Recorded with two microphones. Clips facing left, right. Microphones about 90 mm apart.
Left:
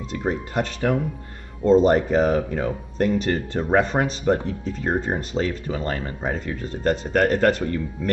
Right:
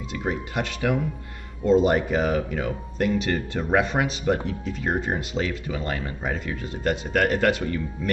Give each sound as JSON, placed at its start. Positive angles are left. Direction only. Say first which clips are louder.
{"t": 0.1, "sound": "speech", "louder": "left 3 dB", "side_deg": 40}